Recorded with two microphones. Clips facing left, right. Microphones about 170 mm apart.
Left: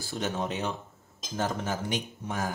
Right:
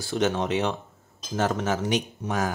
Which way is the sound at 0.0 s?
80° right.